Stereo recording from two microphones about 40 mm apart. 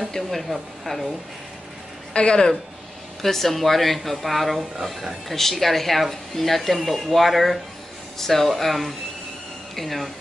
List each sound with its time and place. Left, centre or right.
0.3 s speech: centre
2.1 s speech: left
3.2 s speech: centre
5.3 s speech: centre